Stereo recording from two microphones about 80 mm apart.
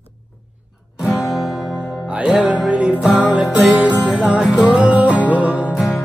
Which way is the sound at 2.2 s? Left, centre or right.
Centre.